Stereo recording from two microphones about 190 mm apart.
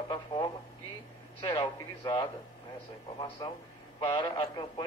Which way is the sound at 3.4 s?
20° left (ahead or behind).